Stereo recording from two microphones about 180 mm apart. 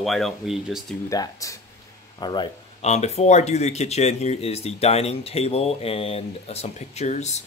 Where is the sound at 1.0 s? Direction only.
20° left (ahead or behind).